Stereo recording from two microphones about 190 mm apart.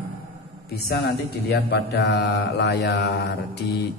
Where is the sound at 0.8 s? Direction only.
55° left (ahead or behind).